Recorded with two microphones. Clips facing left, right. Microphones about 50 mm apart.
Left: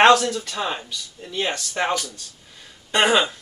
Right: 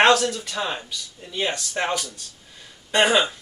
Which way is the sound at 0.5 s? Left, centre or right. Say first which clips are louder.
Left 1 dB; centre.